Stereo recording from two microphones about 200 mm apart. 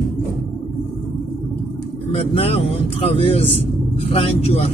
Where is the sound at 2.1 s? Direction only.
30° left (ahead or behind).